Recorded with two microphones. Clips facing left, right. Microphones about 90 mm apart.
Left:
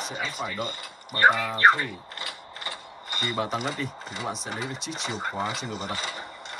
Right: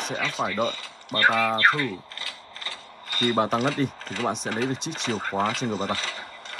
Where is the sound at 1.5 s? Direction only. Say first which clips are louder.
Left 2 dB; 20° left (ahead or behind).